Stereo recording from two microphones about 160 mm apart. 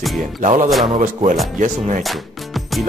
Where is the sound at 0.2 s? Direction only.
55° right (ahead or behind).